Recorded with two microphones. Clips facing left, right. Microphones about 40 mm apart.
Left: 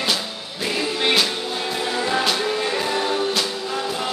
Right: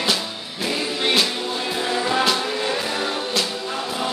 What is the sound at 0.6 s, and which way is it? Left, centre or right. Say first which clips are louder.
Music: left 1 dB; centre.